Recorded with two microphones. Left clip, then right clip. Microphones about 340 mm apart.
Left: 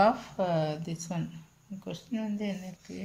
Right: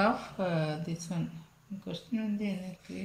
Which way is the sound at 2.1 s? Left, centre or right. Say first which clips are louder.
Left 1 dB; left.